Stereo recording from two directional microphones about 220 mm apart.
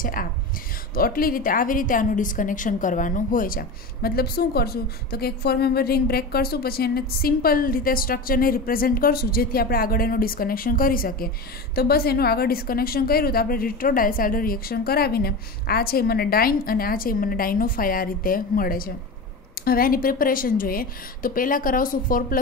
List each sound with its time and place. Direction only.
0.0 s a woman's voice: 40° left (ahead or behind)